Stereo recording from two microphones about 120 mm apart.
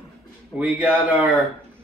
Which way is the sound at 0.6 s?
10° right (ahead or behind).